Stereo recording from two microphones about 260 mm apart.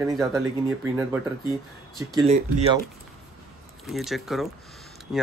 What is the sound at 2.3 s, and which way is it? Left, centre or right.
Speech, right.